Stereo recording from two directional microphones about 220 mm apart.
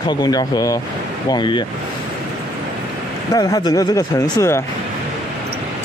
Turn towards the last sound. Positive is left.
turn(degrees=15)  # may be behind; listen again after turning